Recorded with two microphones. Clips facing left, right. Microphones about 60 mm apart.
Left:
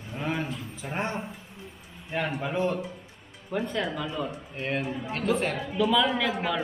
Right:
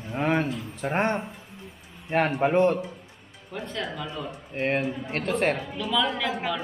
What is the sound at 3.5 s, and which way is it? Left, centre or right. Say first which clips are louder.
Speech: left 4 dB; centre.